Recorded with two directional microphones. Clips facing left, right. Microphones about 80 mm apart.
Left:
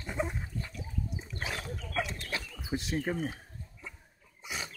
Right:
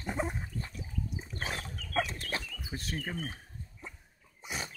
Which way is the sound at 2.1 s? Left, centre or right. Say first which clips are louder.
Even; right.